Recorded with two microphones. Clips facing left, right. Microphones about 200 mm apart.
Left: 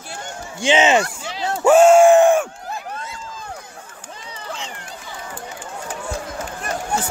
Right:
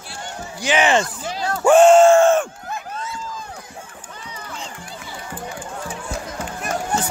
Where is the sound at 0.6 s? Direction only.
25° left (ahead or behind).